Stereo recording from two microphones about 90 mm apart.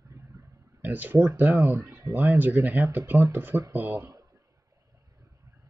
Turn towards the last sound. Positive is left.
turn(degrees=-40)  # may be behind; listen again after turning